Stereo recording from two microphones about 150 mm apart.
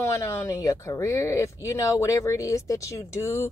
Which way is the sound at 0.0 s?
20° left (ahead or behind).